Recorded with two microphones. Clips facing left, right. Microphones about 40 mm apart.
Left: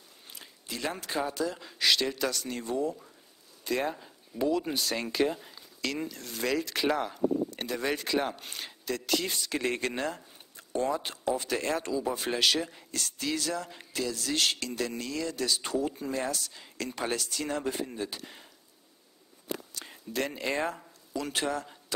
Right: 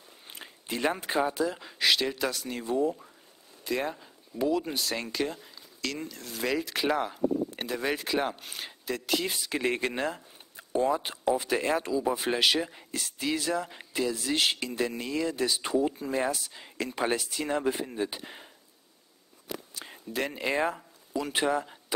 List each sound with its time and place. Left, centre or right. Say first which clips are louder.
0.3 s biting: right 5 dB; right
1.0 s speech: right 4 dB; centre
19.7 s speech: right 1 dB; centre